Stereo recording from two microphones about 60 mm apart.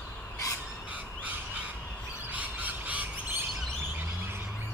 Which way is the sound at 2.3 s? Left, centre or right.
Right.